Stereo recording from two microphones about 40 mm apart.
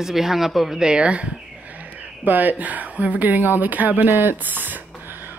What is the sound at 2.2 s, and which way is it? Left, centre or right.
Speech, right.